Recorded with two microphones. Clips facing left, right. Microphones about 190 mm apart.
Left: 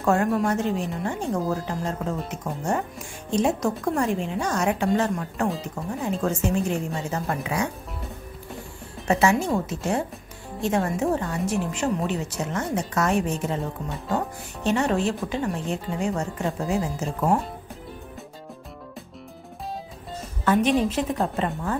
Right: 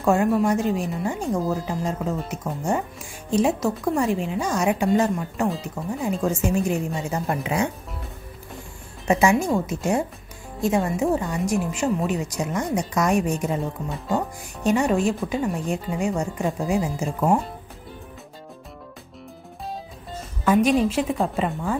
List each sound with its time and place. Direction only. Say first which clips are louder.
0.0 s a woman's voice: right 2 dB; 10° right (ahead or behind)
9.0 s a woman's voice: right 2 dB; 15° right (ahead or behind)
17.2 s speech: right 2 dB; centre (ahead or behind)
20.4 s a woman's voice: right 2 dB; 10° right (ahead or behind)